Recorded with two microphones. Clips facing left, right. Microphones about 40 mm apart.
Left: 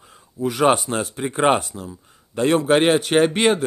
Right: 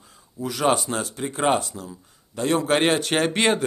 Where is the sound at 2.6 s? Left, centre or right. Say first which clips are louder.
Left 3 dB; centre.